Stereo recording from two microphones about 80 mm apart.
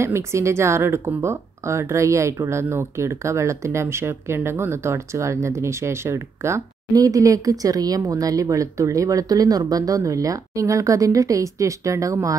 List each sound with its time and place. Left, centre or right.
0.0 s speech: right
6.9 s speech: right